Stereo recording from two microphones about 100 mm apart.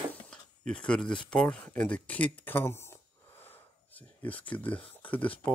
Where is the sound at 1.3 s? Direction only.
10° left (ahead or behind).